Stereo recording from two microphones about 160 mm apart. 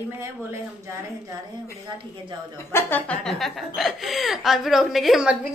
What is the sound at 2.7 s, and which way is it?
Speech, 10° left (ahead or behind).